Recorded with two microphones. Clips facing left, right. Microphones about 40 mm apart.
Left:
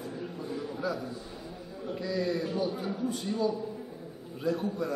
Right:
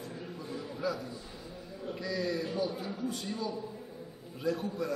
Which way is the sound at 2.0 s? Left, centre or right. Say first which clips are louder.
Left 3 dB; centre.